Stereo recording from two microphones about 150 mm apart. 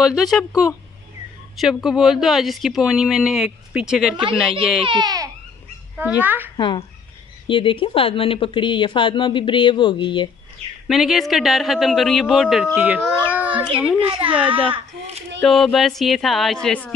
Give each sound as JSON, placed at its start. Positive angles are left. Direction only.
{"t": 0.0, "sound": "speech", "side_deg": 0}
{"t": 4.8, "sound": "speech", "side_deg": -30}
{"t": 5.9, "sound": "speech", "side_deg": -10}
{"t": 6.5, "sound": "speech", "side_deg": 30}
{"t": 10.9, "sound": "speech", "side_deg": 0}
{"t": 13.3, "sound": "a sound", "side_deg": -10}
{"t": 13.9, "sound": "a child's voice", "side_deg": -40}
{"t": 15.4, "sound": "a woman's voice", "side_deg": 0}